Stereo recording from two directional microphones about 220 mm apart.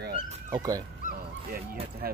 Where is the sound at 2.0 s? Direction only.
45° right (ahead or behind).